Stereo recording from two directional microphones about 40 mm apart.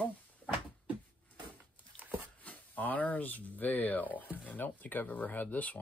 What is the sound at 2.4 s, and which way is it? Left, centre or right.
Speech, left.